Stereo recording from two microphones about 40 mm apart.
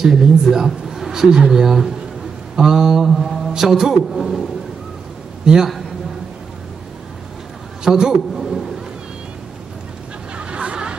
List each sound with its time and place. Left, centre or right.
0.0 s speech: centre
3.2 s mantra: centre
3.5 s a man's voice: centre
5.4 s a man's voice: centre
7.8 s a man's voice: centre
10.3 s a sound: right